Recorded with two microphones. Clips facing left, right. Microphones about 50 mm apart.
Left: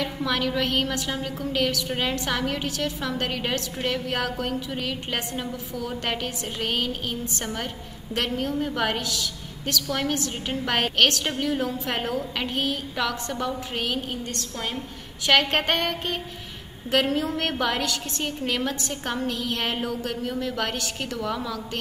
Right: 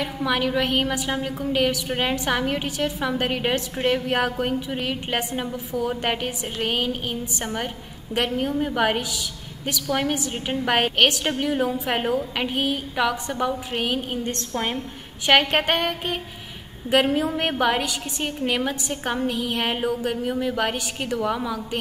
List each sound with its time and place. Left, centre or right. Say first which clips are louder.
0.0 s a woman's voice: right 2 dB; centre
14.3 s a woman's voice: right 5 dB; right
15.2 s a woman's voice: right 2 dB; centre